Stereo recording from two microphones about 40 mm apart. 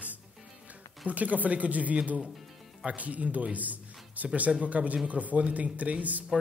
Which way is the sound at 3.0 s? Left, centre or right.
Right.